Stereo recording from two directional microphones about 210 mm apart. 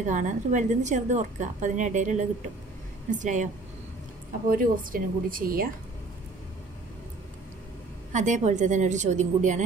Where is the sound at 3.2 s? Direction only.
35° right (ahead or behind).